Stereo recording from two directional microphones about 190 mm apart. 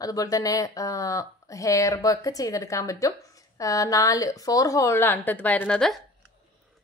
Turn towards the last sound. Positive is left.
turn(degrees=5)  # may be behind; listen again after turning